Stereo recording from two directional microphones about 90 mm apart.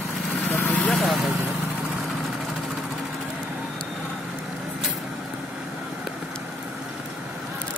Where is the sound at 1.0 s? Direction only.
Centre (ahead or behind).